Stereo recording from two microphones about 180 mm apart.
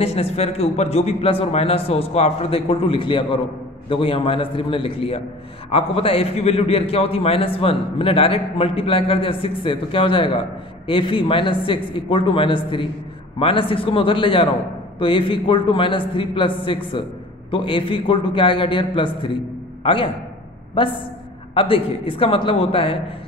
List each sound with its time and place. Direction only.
0.0 s a man's voice: 35° left (ahead or behind)